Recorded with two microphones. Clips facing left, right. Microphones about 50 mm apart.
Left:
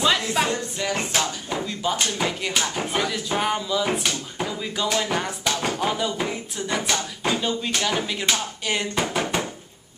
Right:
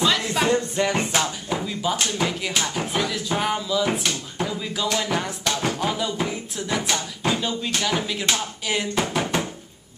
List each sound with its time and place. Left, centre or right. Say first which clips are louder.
0.0 s music: even; centre
0.5 s music: right 5 dB; right
1.1 s speech: right 1 dB; centre